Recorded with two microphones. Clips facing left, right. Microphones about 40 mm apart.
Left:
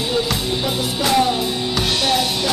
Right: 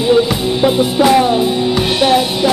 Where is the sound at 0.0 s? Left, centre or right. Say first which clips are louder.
Right 9 dB; centre.